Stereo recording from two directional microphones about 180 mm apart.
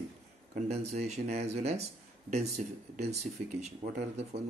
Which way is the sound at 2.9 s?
35° right (ahead or behind).